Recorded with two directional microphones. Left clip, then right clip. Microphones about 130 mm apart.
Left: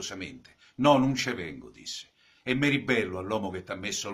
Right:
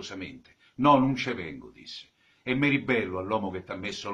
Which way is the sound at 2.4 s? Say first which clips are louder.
Right 1 dB; 40° left (ahead or behind).